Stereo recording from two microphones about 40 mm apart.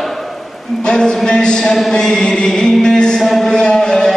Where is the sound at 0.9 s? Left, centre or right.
Left.